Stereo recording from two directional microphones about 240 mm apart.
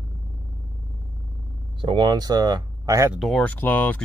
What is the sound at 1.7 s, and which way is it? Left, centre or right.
Speech, centre.